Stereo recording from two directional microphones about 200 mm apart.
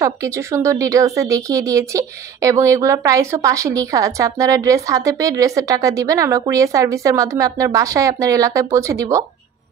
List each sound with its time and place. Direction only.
0.0 s speech: 15° right (ahead or behind)